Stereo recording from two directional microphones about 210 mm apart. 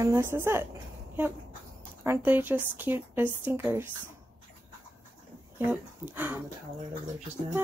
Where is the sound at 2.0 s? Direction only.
10° right (ahead or behind).